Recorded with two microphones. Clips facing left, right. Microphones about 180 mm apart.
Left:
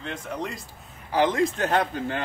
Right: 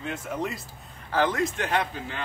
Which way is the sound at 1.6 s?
40° left (ahead or behind).